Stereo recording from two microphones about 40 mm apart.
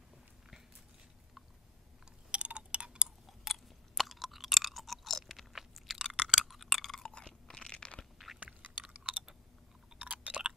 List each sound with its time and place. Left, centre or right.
2.3 s tick-tock: right
3.3 s chewing: centre
5.3 s biting: centre
5.9 s chewing: centre
6.2 s a sound: centre
7.0 s chewing: left
7.7 s crunch: left
8.8 s chewing: right